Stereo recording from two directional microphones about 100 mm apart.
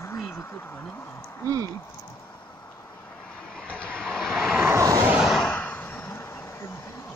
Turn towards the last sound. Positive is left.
turn(degrees=25)  # may be behind; listen again after turning